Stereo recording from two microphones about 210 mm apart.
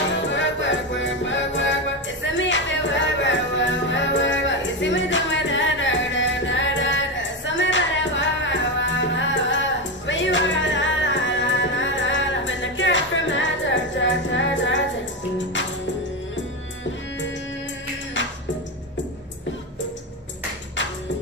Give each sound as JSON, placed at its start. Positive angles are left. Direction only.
{"t": 0.3, "sound": "music", "side_deg": 60}